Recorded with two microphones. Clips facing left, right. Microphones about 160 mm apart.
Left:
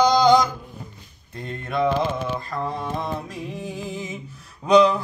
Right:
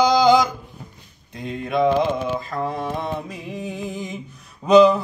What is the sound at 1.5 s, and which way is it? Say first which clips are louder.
Mantra: right 4 dB; centre (ahead or behind).